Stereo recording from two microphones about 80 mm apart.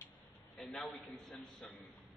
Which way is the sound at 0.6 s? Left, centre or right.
Centre.